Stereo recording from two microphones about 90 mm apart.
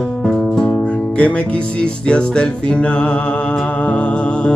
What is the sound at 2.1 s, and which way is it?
Music, 10° left (ahead or behind).